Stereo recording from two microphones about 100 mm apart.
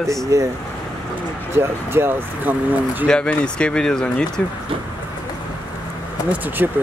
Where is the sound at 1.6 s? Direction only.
25° right (ahead or behind).